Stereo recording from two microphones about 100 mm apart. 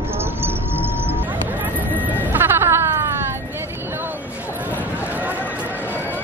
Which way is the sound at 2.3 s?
25° right (ahead or behind).